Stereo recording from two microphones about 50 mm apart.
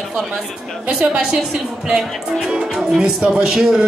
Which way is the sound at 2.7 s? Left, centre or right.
Centre.